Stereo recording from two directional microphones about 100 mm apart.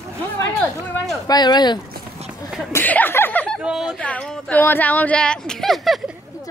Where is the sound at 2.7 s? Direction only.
20° left (ahead or behind).